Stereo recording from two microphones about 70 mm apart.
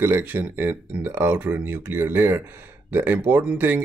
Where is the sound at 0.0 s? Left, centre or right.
Right.